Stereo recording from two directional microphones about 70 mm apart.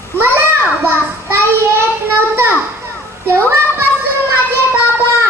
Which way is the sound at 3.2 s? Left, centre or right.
Right.